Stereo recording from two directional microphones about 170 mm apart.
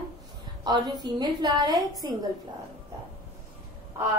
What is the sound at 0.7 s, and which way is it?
A woman's voice, 25° right (ahead or behind).